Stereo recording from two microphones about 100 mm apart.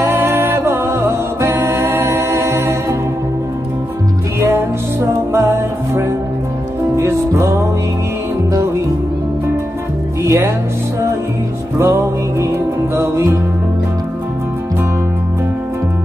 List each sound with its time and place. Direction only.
0.0 s music: 25° right (ahead or behind)
4.4 s music: 25° right (ahead or behind)
10.2 s music: 25° right (ahead or behind)
11.8 s music: 25° right (ahead or behind)